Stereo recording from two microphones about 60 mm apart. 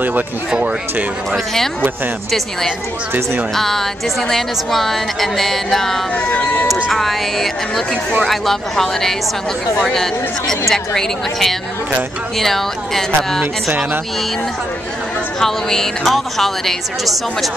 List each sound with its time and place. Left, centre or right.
1.3 s a woman's voice: centre
3.5 s a woman's voice: centre
6.1 s speech: left
6.9 s a woman's voice: centre
10.7 s a woman's voice: centre
15.4 s a woman's voice: centre